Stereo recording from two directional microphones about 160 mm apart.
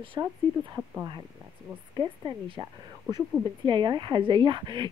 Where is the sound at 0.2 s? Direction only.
25° right (ahead or behind).